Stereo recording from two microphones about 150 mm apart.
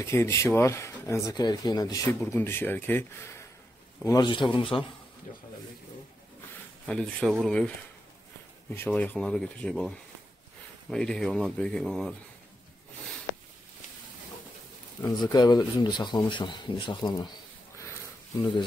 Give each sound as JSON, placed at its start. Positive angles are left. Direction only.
{"t": 0.0, "sound": "speech", "side_deg": 20}
{"t": 4.0, "sound": "a man's voice", "side_deg": 25}
{"t": 6.9, "sound": "speech", "side_deg": 5}
{"t": 8.7, "sound": "speech", "side_deg": 10}
{"t": 15.0, "sound": "speech", "side_deg": 25}